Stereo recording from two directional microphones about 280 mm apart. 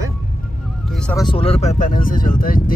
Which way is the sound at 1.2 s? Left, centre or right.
Centre.